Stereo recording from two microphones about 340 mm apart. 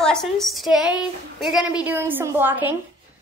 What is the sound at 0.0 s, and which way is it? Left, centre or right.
A woman's voice, centre.